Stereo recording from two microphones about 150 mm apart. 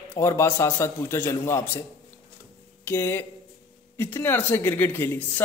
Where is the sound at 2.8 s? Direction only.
15° left (ahead or behind).